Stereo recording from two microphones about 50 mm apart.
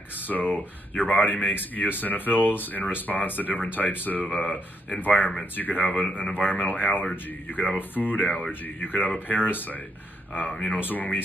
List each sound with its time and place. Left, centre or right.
0.3 s speech: left